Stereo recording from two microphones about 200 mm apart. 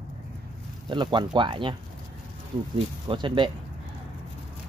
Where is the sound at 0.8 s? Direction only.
25° right (ahead or behind).